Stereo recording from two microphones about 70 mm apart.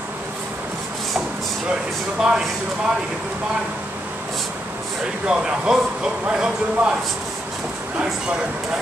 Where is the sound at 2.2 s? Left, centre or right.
Centre.